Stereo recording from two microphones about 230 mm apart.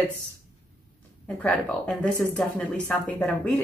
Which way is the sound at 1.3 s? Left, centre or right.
Centre.